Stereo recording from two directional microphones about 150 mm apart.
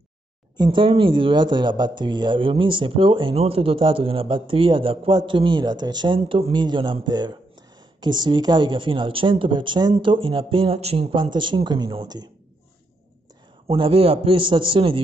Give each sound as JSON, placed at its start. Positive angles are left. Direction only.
{"t": 0.6, "sound": "speech", "side_deg": -30}
{"t": 13.7, "sound": "speech", "side_deg": -35}